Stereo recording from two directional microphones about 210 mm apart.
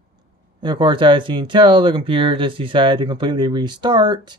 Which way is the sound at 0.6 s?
20° right (ahead or behind).